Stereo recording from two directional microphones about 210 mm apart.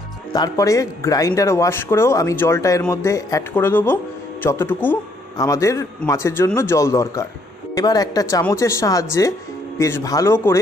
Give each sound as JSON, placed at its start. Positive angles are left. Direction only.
{"t": 0.3, "sound": "speech", "side_deg": 15}